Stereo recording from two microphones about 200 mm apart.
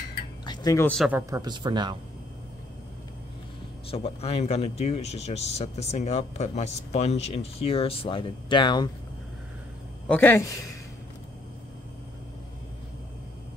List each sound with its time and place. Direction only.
0.5 s a sound: 20° left (ahead or behind)
0.8 s speech: centre (ahead or behind)
1.1 s speech: 20° right (ahead or behind)
3.9 s speech: 30° left (ahead or behind)
10.0 s a man's voice: 10° left (ahead or behind)